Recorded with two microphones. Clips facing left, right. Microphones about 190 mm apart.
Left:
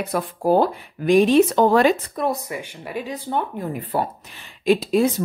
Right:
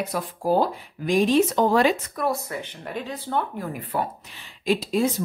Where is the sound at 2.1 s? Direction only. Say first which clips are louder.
Left 2 dB; 20° left (ahead or behind).